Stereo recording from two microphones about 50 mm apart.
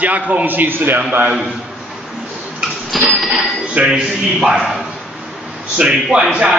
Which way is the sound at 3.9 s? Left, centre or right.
Centre.